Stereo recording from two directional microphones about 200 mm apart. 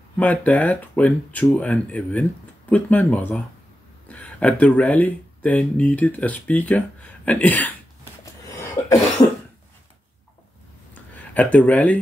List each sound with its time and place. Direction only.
0.2 s speech: 10° left (ahead or behind)
8.5 s cough: 15° left (ahead or behind)
11.3 s speech: 5° left (ahead or behind)